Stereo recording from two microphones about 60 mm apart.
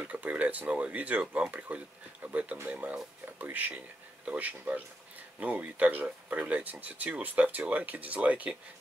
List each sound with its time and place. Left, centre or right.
0.0 s speech: right